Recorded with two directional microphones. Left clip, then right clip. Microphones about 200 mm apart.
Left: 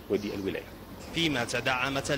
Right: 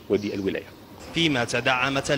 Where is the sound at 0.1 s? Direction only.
Centre (ahead or behind).